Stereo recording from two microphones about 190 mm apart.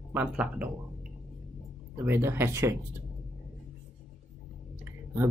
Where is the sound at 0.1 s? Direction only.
10° right (ahead or behind).